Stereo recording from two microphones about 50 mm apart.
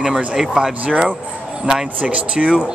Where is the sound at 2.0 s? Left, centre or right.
Right.